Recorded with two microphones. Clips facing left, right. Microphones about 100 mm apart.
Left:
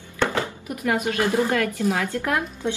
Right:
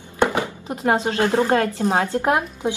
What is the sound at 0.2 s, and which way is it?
Speech, 20° right (ahead or behind).